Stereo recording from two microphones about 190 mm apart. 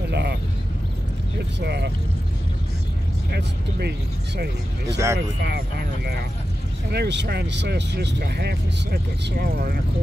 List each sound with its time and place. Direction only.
0.1 s a sound: 60° right (ahead or behind)
1.6 s speech: 60° right (ahead or behind)
3.3 s speech: 60° right (ahead or behind)
4.8 s speech: 15° right (ahead or behind)
6.9 s speech: 65° right (ahead or behind)